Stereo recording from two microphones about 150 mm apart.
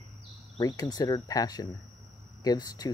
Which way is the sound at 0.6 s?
20° left (ahead or behind).